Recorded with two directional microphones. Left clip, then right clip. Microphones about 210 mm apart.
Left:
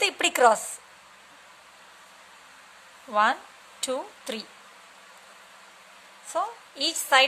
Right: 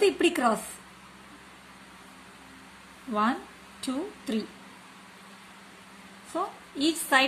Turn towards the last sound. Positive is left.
turn(degrees=30)  # may be behind; listen again after turning